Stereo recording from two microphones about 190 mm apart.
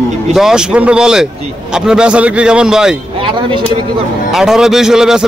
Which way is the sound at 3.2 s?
25° right (ahead or behind).